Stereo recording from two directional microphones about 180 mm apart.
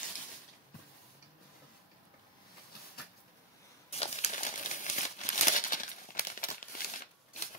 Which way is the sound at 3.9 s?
35° left (ahead or behind).